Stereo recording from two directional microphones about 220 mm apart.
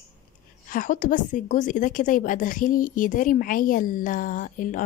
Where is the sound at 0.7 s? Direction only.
35° left (ahead or behind).